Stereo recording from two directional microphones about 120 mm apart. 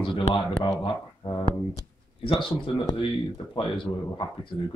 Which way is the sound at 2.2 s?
45° left (ahead or behind).